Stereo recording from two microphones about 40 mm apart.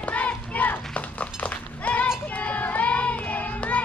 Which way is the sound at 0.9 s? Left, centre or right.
Left.